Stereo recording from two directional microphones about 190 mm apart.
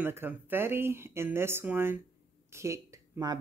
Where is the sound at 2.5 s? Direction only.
15° right (ahead or behind).